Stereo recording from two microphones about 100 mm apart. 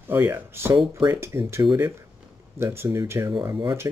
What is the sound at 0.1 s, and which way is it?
Speech, 25° right (ahead or behind).